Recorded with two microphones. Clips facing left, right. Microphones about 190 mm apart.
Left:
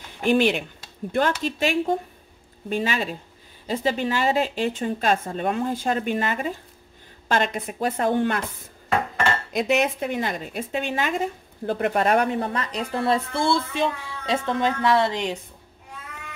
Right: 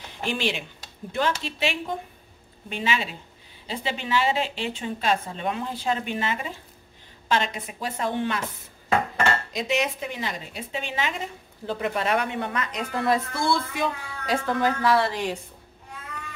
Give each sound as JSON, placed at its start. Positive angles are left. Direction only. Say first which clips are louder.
{"t": 0.2, "sound": "speech", "louder": "left 8 dB", "side_deg": 50}
{"t": 9.5, "sound": "a woman's voice", "louder": "left 4 dB", "side_deg": 55}